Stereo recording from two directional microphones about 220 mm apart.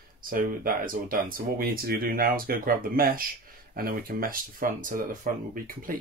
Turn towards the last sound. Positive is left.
turn(degrees=-40)  # may be behind; listen again after turning